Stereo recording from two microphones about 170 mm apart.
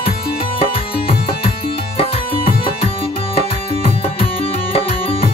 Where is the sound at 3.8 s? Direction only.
35° left (ahead or behind).